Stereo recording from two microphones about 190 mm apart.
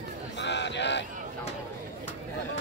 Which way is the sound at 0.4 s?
65° left (ahead or behind).